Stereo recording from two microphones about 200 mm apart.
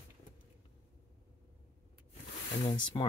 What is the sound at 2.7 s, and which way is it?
Speech, 25° left (ahead or behind).